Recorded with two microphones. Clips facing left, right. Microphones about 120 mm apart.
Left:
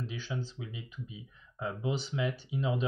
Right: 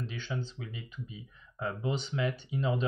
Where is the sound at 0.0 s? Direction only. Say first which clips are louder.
Right 1 dB; 5° left (ahead or behind).